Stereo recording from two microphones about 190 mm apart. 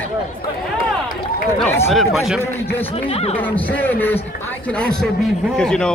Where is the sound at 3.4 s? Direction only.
10° left (ahead or behind).